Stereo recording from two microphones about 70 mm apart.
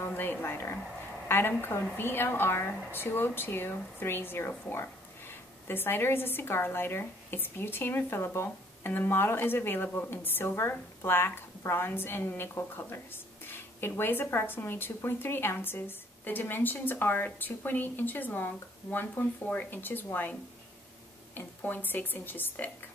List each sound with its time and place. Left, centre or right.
0.0 s a woman's voice: left
21.4 s a woman's voice: left